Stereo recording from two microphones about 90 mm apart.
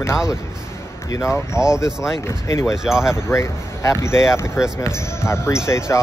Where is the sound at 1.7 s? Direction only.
30° left (ahead or behind).